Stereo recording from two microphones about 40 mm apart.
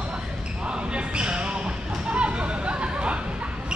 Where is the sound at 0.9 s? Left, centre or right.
Right.